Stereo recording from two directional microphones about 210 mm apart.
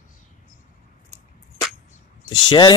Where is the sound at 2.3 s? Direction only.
20° left (ahead or behind).